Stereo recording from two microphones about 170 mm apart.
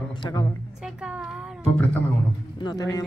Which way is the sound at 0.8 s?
5° right (ahead or behind).